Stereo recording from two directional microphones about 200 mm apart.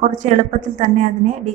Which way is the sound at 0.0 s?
40° right (ahead or behind).